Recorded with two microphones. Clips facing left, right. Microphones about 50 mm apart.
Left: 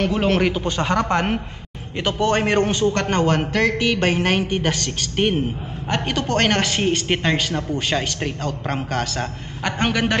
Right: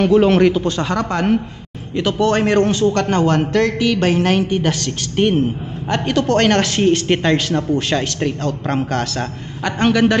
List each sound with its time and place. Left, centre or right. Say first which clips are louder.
0.0 s speech: right 7 dB; centre
0.6 s a man's voice: right 2 dB; left